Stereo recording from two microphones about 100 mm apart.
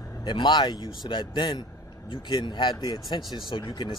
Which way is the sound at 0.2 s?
50° left (ahead or behind).